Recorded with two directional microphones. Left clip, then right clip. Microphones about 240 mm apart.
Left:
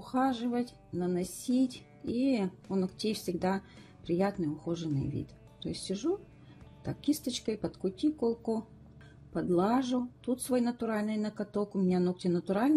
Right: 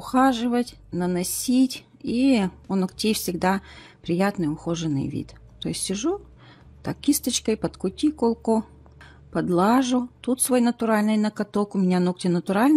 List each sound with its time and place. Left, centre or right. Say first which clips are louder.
0.0 s speech: right 10 dB; right